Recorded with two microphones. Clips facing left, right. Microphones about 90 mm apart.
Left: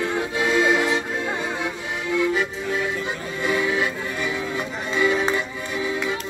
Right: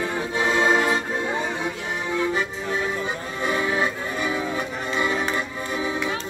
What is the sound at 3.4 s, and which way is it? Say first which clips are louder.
Accordion: left 1 dB; 35° right (ahead or behind).